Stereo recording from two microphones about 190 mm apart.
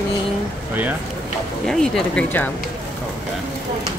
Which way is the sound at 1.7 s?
Centre (ahead or behind).